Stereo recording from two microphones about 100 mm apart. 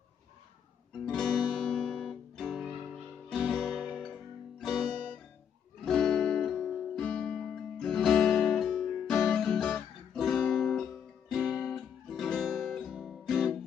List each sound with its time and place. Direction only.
1.0 s guitar: 5° left (ahead or behind)
1.5 s music: 5° left (ahead or behind)
10.1 s guitar: centre (ahead or behind)